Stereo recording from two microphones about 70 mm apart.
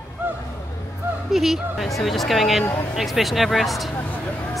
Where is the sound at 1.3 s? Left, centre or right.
Centre.